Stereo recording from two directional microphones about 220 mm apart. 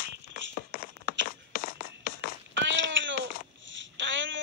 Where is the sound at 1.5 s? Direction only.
40° left (ahead or behind).